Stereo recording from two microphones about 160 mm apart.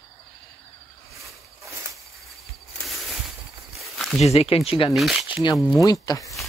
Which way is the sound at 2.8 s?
Centre (ahead or behind).